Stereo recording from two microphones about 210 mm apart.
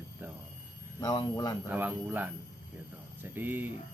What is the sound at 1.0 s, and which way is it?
Speech, 20° left (ahead or behind).